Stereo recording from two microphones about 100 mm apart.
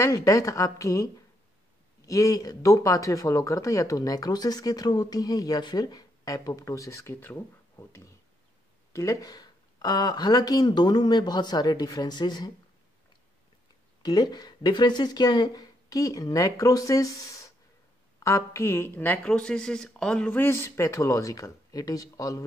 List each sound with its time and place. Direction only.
0.0 s speech: 35° left (ahead or behind)
8.9 s speech: 35° left (ahead or behind)
14.0 s a woman's voice: 40° left (ahead or behind); by 19.1 s 25° left (ahead or behind)
19.2 s speech: 10° left (ahead or behind)
20.3 s speech: 25° left (ahead or behind)